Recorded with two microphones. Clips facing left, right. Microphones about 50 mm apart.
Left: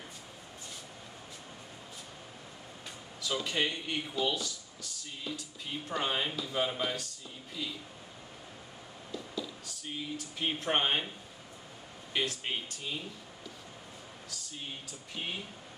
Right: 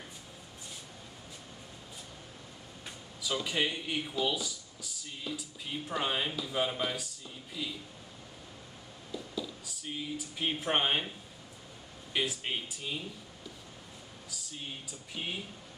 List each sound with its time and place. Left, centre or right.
3.2 s speech: centre
9.1 s speech: centre
12.1 s speech: centre
14.9 s speech: centre